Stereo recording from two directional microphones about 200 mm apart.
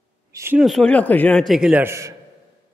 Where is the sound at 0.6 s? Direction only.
Centre (ahead or behind).